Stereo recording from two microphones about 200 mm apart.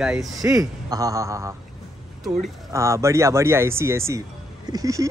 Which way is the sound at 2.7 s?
15° right (ahead or behind).